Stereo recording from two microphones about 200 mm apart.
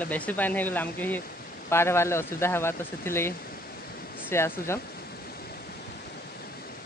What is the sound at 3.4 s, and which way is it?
Waves, 50° left (ahead or behind).